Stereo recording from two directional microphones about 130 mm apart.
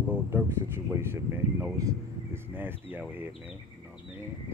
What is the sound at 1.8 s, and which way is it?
Speech, 20° right (ahead or behind).